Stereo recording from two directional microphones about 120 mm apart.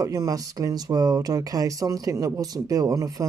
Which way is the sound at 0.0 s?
30° right (ahead or behind).